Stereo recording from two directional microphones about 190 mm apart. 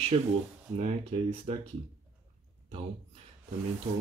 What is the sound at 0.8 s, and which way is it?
Speech, 35° right (ahead or behind).